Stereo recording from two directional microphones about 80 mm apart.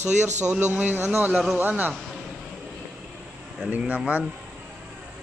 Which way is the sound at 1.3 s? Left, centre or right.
Centre.